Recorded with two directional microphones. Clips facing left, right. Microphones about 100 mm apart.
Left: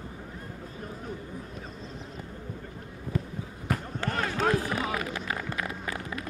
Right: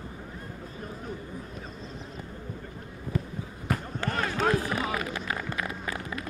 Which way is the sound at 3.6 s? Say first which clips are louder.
Even; 15° right (ahead or behind).